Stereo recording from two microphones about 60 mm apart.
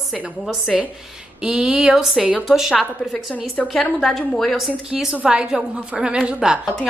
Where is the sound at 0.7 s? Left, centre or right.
Centre.